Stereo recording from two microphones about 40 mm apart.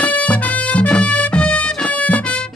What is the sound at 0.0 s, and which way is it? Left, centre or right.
Music, left.